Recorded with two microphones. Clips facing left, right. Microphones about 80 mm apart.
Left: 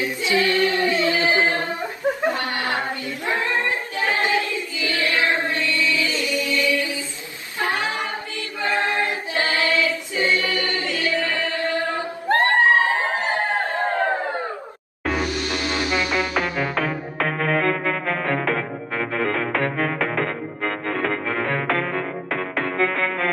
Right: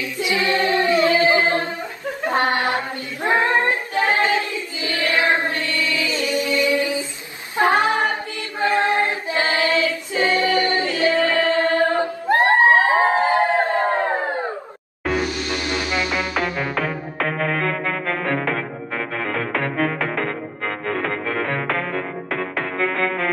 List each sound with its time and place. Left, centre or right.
0.0 s choir: left
0.4 s singing: right
2.3 s a sound: right
3.3 s child singing: right
4.7 s choir: right
5.9 s music: right
7.5 s choir: right
10.1 s singing: right
12.3 s a sound: right
16.1 s music: centre